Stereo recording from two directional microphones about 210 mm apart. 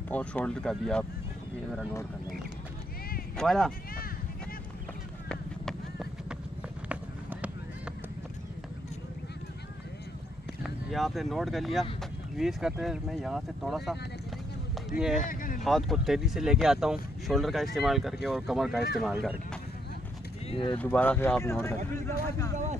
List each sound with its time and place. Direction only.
0.1 s speech: 5° left (ahead or behind)
3.3 s speech: centre (ahead or behind)
5.3 s vehicle: centre (ahead or behind)
6.9 s run: 5° right (ahead or behind)
10.6 s speech: centre (ahead or behind)
15.1 s a sound: 40° left (ahead or behind)
15.6 s speech: centre (ahead or behind)
20.4 s speech: 25° left (ahead or behind)
20.7 s speech: 5° left (ahead or behind)